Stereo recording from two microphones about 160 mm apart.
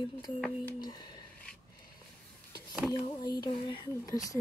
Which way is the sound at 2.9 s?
25° left (ahead or behind).